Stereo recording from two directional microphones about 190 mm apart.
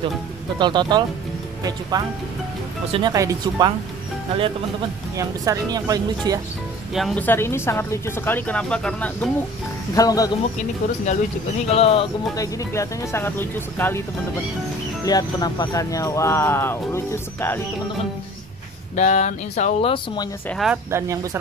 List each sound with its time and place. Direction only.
0.6 s speech: 25° right (ahead or behind)
5.1 s speech: 15° right (ahead or behind)
6.9 s speech: centre (ahead or behind)
9.9 s speech: 20° left (ahead or behind)
11.7 s speech: 30° left (ahead or behind)
12.4 s speech: 15° left (ahead or behind)
15.0 s speech: 20° left (ahead or behind)
18.9 s speech: 40° left (ahead or behind)
20.4 s speech: centre (ahead or behind)
20.9 s speech: 15° right (ahead or behind)